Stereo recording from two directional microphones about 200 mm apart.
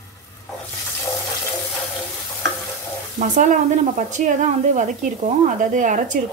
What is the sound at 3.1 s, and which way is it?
A woman's voice, 40° right (ahead or behind).